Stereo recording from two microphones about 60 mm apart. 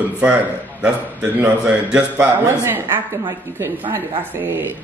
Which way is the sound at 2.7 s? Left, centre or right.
Right.